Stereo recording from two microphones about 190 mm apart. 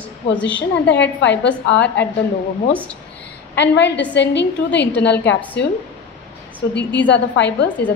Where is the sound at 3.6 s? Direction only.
65° left (ahead or behind).